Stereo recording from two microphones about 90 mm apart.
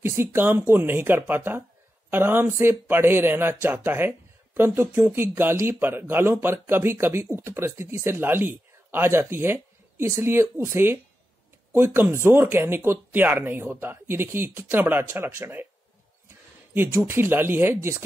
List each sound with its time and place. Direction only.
0.0 s speech: 25° right (ahead or behind)
16.7 s speech: 25° right (ahead or behind)